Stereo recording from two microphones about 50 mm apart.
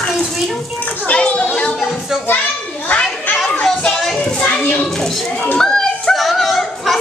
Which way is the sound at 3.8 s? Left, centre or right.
Centre.